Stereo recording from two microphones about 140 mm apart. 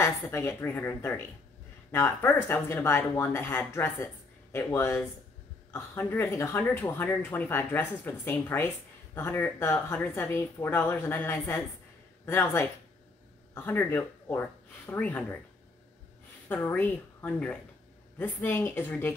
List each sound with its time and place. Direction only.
0.0 s speech: 20° left (ahead or behind)
16.4 s speech: 15° left (ahead or behind)